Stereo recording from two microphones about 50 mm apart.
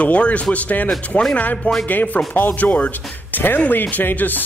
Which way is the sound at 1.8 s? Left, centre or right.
Left.